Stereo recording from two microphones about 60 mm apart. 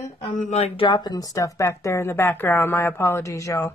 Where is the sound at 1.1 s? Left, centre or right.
Left.